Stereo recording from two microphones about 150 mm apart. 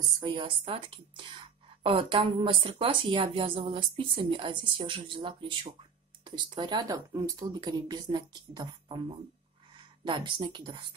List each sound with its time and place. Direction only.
0.2 s a woman's voice: 35° right (ahead or behind)
10.0 s a woman's voice: 30° right (ahead or behind)